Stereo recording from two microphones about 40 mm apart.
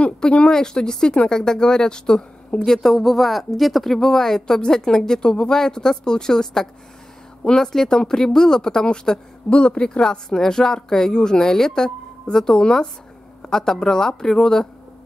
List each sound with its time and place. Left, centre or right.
0.0 s speech: left
2.8 s speech: centre